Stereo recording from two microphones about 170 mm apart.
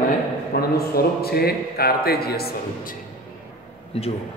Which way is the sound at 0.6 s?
65° left (ahead or behind).